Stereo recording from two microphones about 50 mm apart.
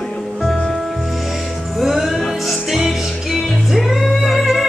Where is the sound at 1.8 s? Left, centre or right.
Centre.